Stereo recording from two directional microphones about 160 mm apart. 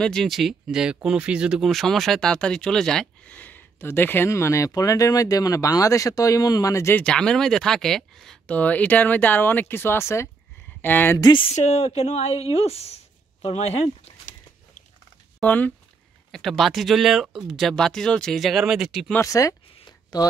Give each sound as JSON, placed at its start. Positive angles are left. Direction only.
{"t": 0.0, "sound": "speech", "side_deg": 5}
{"t": 11.1, "sound": "speech", "side_deg": 30}
{"t": 15.4, "sound": "speech", "side_deg": 10}
{"t": 19.1, "sound": "speech", "side_deg": 20}
{"t": 19.8, "sound": "a sound", "side_deg": 25}